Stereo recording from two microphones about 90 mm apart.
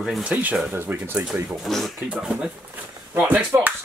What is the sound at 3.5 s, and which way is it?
Speech, 35° right (ahead or behind).